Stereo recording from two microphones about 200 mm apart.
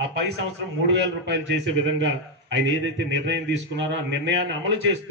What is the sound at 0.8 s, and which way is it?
Speech, 60° right (ahead or behind).